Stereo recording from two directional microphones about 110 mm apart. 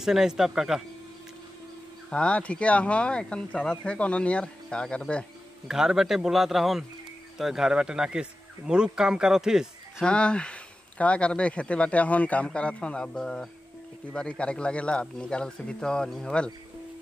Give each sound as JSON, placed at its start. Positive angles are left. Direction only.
{"t": 0.0, "sound": "speech", "side_deg": -5}
{"t": 2.0, "sound": "speech", "side_deg": 10}
{"t": 5.7, "sound": "speech", "side_deg": -5}
{"t": 10.0, "sound": "speech", "side_deg": 10}